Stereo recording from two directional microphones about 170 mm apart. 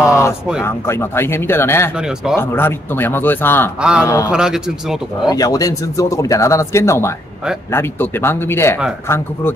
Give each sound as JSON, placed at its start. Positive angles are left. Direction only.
{"t": 0.0, "sound": "a sound", "side_deg": 15}
{"t": 0.6, "sound": "speech", "side_deg": 15}
{"t": 2.0, "sound": "speech", "side_deg": -5}
{"t": 2.3, "sound": "speech", "side_deg": 10}
{"t": 3.8, "sound": "speech", "side_deg": -5}
{"t": 5.3, "sound": "speech", "side_deg": 20}